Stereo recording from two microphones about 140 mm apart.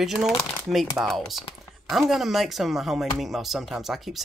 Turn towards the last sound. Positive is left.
turn(degrees=0)  # may be behind; listen again after turning